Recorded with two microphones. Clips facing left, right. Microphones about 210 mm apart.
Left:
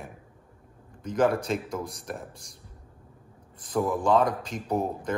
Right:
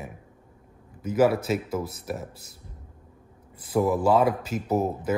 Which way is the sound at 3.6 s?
10° right (ahead or behind).